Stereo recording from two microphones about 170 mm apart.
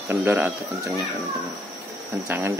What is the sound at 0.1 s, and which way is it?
Speech, 10° right (ahead or behind).